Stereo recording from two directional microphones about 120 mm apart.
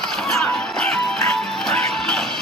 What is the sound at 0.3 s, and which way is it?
Music, 5° left (ahead or behind).